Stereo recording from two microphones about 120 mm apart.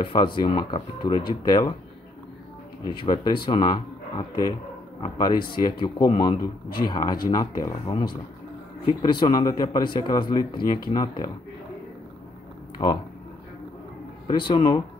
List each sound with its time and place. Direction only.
0.0 s speech: 40° left (ahead or behind)
2.8 s speech: 40° left (ahead or behind)
12.7 s speech: 40° left (ahead or behind)
14.2 s speech: 45° left (ahead or behind)